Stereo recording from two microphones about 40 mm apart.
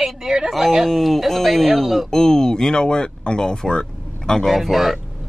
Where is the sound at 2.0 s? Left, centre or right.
Centre.